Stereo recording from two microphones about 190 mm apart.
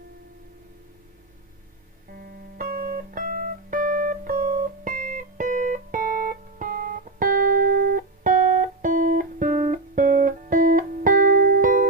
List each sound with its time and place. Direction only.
2.1 s music: 50° right (ahead or behind)